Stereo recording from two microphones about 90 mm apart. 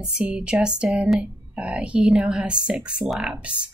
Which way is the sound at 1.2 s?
15° right (ahead or behind).